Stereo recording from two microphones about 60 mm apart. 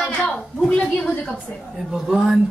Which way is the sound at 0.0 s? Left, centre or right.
Left.